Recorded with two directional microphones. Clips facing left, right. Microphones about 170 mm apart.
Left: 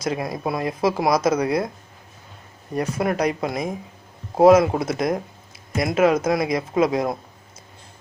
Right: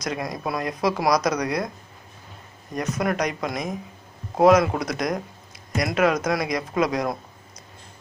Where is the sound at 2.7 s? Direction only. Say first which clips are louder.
Left 2 dB; 30° left (ahead or behind).